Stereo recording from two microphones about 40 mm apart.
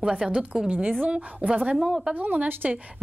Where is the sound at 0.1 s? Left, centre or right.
Right.